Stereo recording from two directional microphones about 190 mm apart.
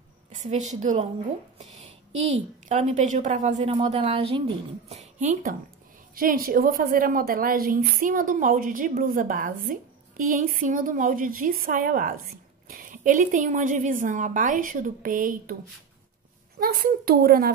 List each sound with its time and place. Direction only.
0.5 s a woman's voice: 40° right (ahead or behind)
1.6 s a sound: 35° right (ahead or behind)
2.7 s a woman's voice: 40° right (ahead or behind)
16.5 s a woman's voice: 50° right (ahead or behind)